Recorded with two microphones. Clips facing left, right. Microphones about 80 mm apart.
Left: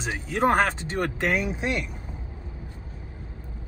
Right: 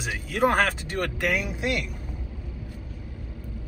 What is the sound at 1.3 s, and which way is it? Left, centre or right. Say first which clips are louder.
Speech: left 1 dB; left.